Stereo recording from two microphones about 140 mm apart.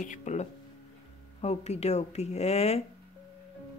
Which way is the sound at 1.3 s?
50° left (ahead or behind).